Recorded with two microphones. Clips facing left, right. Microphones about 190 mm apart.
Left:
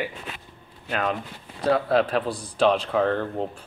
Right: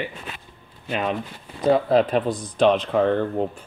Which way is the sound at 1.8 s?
Centre (ahead or behind).